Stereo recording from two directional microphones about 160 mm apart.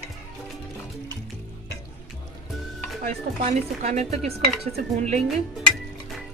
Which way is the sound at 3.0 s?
45° right (ahead or behind).